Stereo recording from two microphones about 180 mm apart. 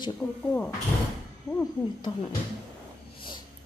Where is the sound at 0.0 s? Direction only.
15° left (ahead or behind).